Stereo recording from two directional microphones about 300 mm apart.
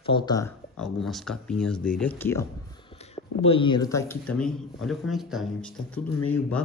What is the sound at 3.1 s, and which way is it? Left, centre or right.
A man's voice, centre.